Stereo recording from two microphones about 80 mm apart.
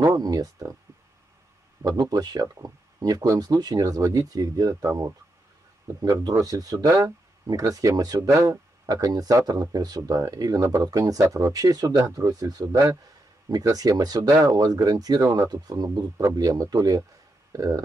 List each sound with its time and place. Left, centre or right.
0.0 s a sound: right
1.8 s speech: right
6.0 s speech: right
8.2 s speech: right